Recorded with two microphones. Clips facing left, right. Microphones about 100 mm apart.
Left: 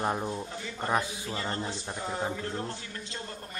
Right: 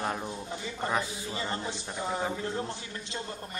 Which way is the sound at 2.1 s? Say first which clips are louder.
Right 1 dB; centre (ahead or behind).